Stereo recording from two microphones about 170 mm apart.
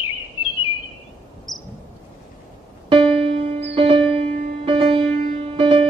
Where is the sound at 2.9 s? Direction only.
35° right (ahead or behind).